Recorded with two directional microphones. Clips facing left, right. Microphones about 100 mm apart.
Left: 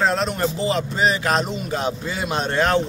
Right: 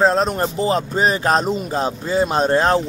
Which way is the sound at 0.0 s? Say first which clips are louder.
Right 4 dB; 35° right (ahead or behind).